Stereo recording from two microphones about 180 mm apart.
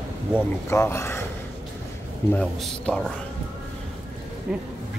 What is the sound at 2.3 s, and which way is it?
Speech, 5° left (ahead or behind).